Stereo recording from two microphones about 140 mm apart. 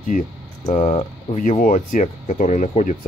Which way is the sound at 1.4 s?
75° left (ahead or behind).